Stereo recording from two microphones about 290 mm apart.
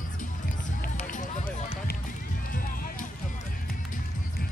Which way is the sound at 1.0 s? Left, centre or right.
Left.